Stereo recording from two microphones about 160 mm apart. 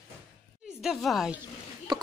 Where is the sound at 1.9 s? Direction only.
25° right (ahead or behind).